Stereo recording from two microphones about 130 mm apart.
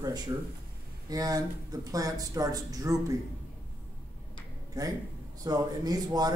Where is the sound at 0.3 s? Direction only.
30° right (ahead or behind).